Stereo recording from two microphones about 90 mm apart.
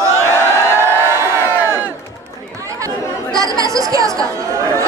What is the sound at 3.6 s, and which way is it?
Speech, 40° right (ahead or behind).